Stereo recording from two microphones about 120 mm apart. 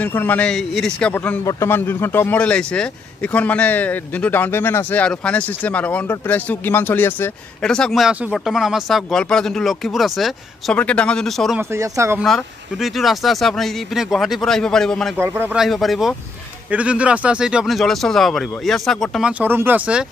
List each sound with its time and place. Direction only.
0.0 s speech: 15° left (ahead or behind)
1.4 s speech: 25° left (ahead or behind)
7.6 s speech: 5° left (ahead or behind)
10.8 s speech: 10° left (ahead or behind)
11.7 s speech: 20° right (ahead or behind)
12.7 s speech: centre (ahead or behind)
15.1 s speech: 20° right (ahead or behind)
15.5 s speech: centre (ahead or behind)
19.4 s speech: 15° right (ahead or behind)